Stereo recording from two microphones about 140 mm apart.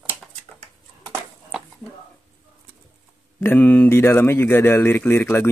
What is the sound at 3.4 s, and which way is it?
Speech, 15° left (ahead or behind).